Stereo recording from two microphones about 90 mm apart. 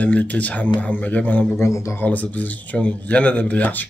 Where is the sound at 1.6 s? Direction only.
35° left (ahead or behind).